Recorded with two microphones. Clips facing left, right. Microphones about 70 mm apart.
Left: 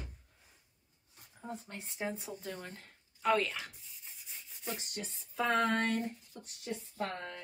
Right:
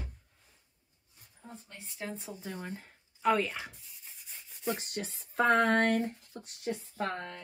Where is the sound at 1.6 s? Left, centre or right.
Left.